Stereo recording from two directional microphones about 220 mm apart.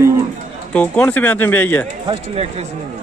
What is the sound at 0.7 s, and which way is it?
A man's voice, 5° left (ahead or behind).